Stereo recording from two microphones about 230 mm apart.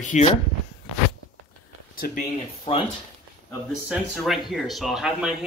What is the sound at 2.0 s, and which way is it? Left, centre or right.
Speech, left.